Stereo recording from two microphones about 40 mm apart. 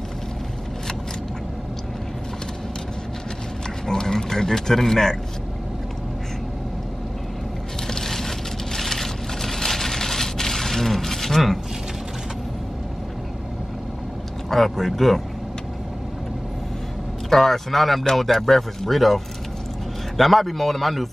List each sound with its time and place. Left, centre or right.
3.8 s speech: centre
7.8 s vehicle: centre
14.5 s speech: centre
17.3 s speech: centre